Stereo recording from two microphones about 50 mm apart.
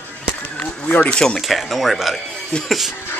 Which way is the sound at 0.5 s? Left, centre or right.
Left.